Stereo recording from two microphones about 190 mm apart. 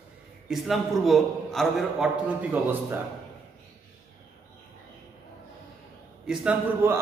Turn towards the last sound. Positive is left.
turn(degrees=-10)  # may be behind; listen again after turning